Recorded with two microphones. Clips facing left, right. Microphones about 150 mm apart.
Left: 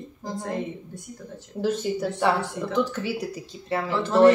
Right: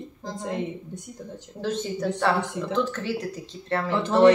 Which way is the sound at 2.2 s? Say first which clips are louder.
Left 1 dB; 15° left (ahead or behind).